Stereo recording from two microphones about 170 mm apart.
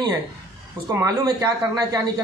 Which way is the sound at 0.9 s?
15° right (ahead or behind).